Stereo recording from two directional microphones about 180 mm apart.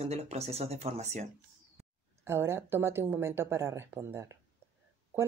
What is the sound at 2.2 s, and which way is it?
Speech, 15° right (ahead or behind).